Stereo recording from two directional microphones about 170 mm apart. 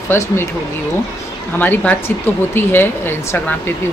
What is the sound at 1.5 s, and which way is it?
Speech, 10° left (ahead or behind).